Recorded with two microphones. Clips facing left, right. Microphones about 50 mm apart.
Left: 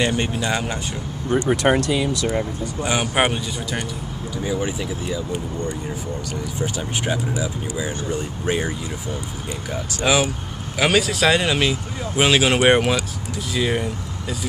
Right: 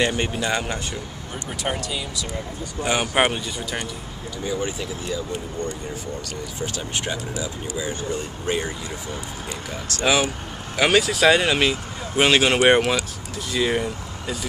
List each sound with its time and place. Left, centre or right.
0.0 s speech: centre
1.5 s speech: left
2.8 s speech: centre
4.5 s speech: centre
6.6 s speech: centre
9.9 s speech: centre